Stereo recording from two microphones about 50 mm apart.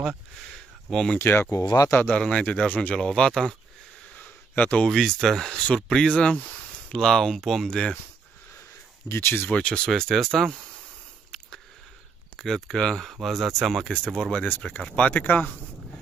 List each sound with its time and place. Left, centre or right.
0.5 s a sound: centre
1.1 s speech: left
1.4 s speech: left
2.0 s speech: left
2.4 s speech: left
3.0 s speech: centre
4.1 s a sound: left
4.7 s speech: centre
5.5 s speech: left; by 7.6 s centre
7.6 s speech: centre
9.1 s speech: left
9.8 s speech: centre
12.4 s speech: centre
13.8 s speech: centre; by 15.5 s left